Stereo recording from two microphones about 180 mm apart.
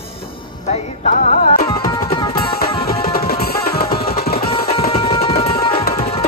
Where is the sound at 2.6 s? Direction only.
55° left (ahead or behind).